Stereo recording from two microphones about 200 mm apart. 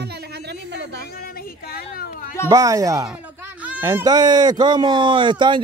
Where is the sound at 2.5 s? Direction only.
15° right (ahead or behind).